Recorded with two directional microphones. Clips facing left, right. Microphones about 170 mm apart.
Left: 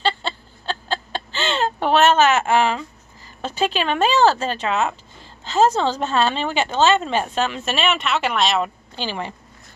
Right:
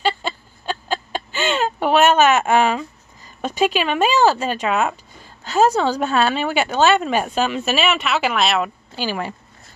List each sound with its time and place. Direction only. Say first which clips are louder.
0.0 s a sound: right 1 dB; 10° right (ahead or behind)
3.4 s speech: right 2 dB; 10° right (ahead or behind)
9.0 s speech: right 3 dB; 20° left (ahead or behind)